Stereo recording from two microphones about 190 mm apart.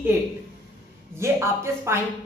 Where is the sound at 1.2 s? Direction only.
15° right (ahead or behind).